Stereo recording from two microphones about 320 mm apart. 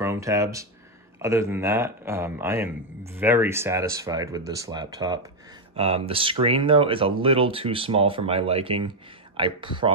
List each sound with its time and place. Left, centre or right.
0.0 s speech: centre